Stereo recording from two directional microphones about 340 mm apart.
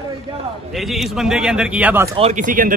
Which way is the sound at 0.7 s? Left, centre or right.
Centre.